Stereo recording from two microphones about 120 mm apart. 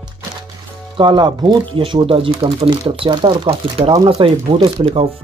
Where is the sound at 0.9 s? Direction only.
40° right (ahead or behind).